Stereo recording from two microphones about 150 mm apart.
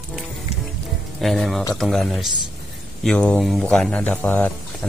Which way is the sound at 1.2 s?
Centre (ahead or behind).